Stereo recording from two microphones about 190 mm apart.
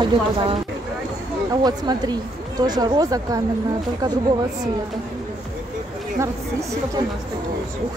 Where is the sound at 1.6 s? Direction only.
20° right (ahead or behind).